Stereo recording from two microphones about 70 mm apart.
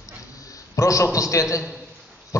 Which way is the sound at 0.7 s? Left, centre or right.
Left.